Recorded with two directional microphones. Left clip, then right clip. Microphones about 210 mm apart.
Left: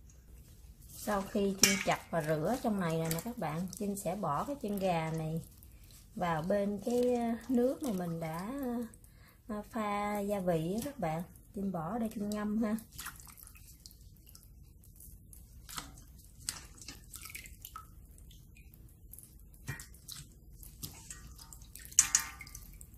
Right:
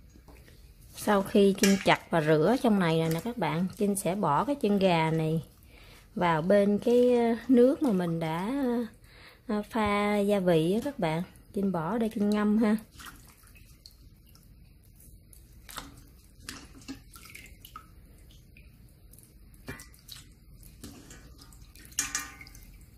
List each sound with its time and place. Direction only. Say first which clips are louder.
1.0 s speech: right 10 dB; 50° right (ahead or behind)